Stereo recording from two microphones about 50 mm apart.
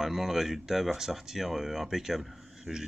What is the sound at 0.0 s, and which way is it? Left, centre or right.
Speech, centre.